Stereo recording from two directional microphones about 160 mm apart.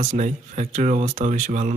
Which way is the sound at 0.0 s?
50° right (ahead or behind).